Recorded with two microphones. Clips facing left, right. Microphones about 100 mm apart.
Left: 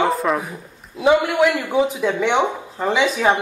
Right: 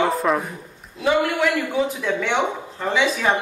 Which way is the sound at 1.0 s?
20° left (ahead or behind).